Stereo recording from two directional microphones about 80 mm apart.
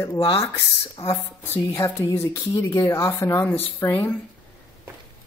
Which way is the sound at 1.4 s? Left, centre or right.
Left.